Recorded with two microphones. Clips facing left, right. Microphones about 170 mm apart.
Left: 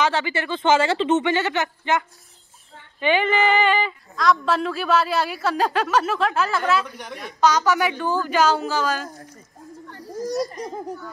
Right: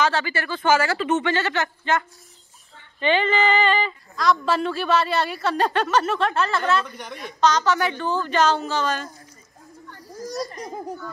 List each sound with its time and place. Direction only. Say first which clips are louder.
0.0 s a man's voice: left 1 dB; 20° left (ahead or behind)
4.1 s a man's voice: left 1 dB; centre (ahead or behind)
9.8 s children playing: left 6 dB; 30° left (ahead or behind)